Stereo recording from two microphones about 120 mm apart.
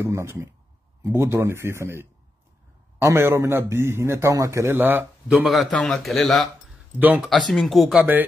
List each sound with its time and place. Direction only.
0.0 s a man's voice: 25° right (ahead or behind)
5.5 s speech: centre (ahead or behind)
7.0 s speech: 15° right (ahead or behind)
7.2 s speech: centre (ahead or behind)
8.0 s speech: 15° right (ahead or behind)